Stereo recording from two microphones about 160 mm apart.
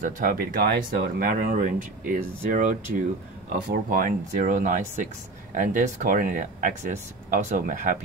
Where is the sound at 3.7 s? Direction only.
65° right (ahead or behind).